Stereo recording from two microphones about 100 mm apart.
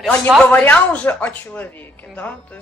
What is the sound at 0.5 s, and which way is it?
A woman's voice, 15° left (ahead or behind).